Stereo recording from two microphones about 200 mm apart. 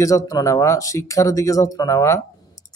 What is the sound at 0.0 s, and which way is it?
Speech, 15° left (ahead or behind).